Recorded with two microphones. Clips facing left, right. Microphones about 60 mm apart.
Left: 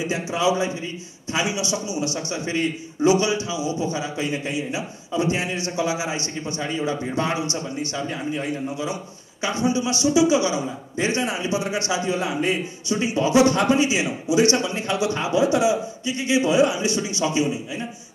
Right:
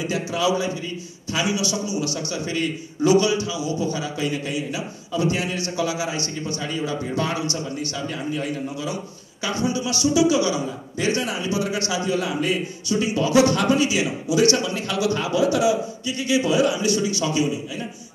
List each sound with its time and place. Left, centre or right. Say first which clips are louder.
0.1 s a man's voice: even; left